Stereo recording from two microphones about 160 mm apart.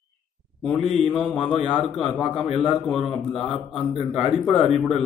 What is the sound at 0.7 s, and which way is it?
A man's voice, 5° right (ahead or behind).